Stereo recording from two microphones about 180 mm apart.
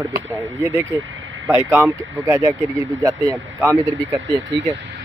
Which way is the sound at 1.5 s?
10° right (ahead or behind).